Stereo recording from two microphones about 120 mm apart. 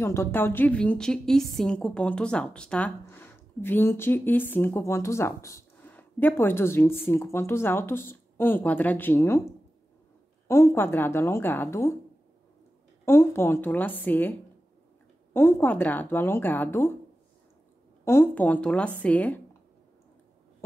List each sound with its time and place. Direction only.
0.0 s a woman's voice: 20° left (ahead or behind)
10.5 s speech: 25° left (ahead or behind)
13.0 s a woman's voice: 20° left (ahead or behind)
15.3 s a woman's voice: 20° left (ahead or behind)
18.0 s a woman's voice: 20° left (ahead or behind)